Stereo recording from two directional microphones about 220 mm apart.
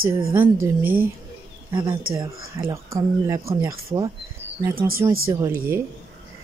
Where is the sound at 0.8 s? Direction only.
40° right (ahead or behind).